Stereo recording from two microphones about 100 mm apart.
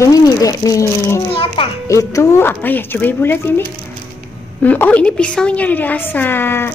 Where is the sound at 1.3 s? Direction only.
70° left (ahead or behind).